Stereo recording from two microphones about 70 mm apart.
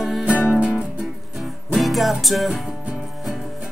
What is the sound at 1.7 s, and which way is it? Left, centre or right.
Music, centre.